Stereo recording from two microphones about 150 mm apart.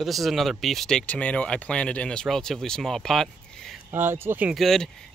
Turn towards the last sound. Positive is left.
turn(degrees=0)  # may be behind; listen again after turning